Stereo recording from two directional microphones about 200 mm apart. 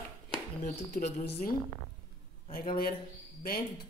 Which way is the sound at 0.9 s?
55° left (ahead or behind).